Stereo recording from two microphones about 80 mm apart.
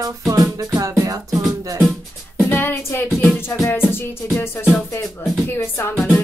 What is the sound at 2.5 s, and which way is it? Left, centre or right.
Music, left.